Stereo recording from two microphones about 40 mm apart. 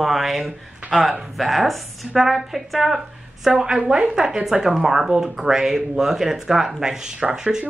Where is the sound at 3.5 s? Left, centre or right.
Right.